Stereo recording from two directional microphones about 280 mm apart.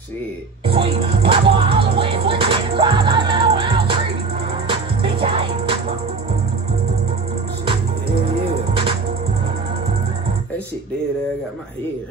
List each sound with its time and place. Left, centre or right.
0.7 s music: centre
8.3 s music: centre